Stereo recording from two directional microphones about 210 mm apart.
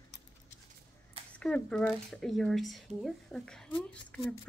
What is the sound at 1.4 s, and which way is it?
Speech, 5° left (ahead or behind).